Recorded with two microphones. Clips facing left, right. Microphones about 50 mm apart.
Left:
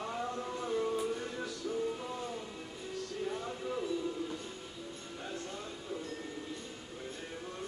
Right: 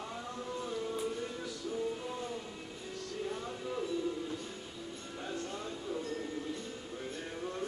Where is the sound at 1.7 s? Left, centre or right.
Centre.